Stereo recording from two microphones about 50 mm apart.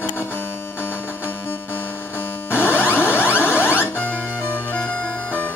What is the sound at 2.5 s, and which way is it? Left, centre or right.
Music, left.